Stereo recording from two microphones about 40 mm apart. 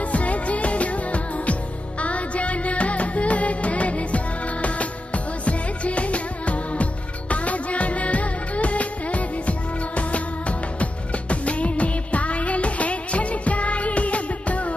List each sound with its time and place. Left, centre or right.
0.1 s music: left